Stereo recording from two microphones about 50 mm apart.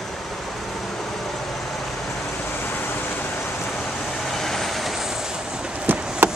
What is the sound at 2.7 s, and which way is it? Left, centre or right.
Vehicle, left.